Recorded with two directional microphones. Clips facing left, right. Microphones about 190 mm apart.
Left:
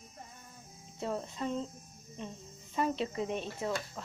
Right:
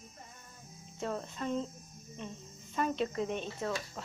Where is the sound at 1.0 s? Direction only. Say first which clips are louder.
Left 1 dB; 10° left (ahead or behind).